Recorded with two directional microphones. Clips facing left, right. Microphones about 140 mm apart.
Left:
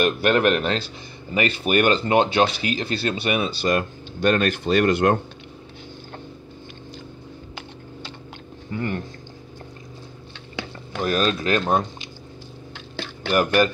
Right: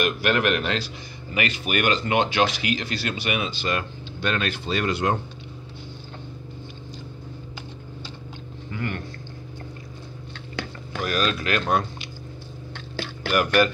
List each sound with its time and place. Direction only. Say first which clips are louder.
0.0 s speech: left 4 dB; 30° left (ahead or behind); by 5.1 s 55° left (ahead or behind)
8.7 s speech: left 4 dB; 30° left (ahead or behind)
11.0 s speech: left 3 dB; 30° left (ahead or behind)
13.3 s speech: left 2 dB; 30° left (ahead or behind)